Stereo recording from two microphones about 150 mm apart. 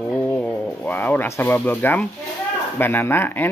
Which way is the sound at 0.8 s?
15° left (ahead or behind).